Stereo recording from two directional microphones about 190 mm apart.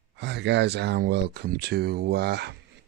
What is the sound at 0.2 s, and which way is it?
Speech, 65° right (ahead or behind).